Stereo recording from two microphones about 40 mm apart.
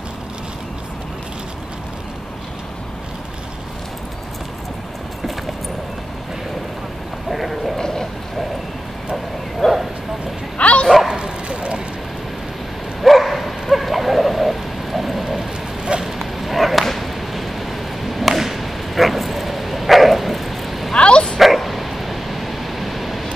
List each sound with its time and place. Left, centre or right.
7.2 s a sound: centre
7.8 s vehicle: centre
9.6 s bow-wow: centre
10.6 s bow-wow: left
11.1 s bow-wow: right
13.0 s bow-wow: centre
16.2 s a sound: centre
20.9 s bow-wow: left
21.4 s dog: centre